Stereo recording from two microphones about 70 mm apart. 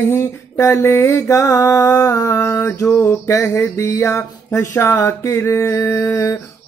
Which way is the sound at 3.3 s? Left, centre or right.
Left.